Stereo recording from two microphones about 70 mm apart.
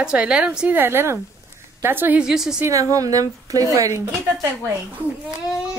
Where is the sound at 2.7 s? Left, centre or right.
Right.